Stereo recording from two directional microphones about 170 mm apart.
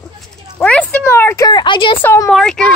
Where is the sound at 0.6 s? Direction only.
10° left (ahead or behind); by 2.0 s 30° left (ahead or behind).